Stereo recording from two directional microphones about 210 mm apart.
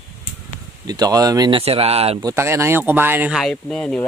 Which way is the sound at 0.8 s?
20° right (ahead or behind).